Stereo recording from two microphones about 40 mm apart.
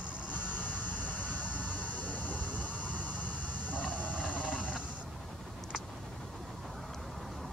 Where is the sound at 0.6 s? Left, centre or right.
Left.